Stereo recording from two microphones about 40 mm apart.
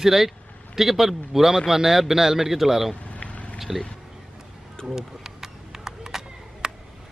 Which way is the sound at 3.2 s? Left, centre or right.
Left.